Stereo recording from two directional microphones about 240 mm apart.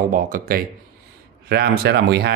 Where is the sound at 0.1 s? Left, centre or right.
Right.